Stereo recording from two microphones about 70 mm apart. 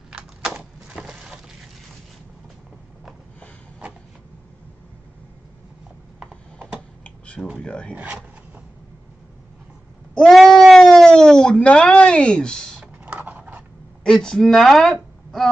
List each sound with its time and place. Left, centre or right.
0.5 s a sound: centre
6.1 s mechanisms: centre
7.6 s speech: centre
7.9 s speech: centre
10.1 s speech: centre
12.8 s a sound: right
14.0 s speech: centre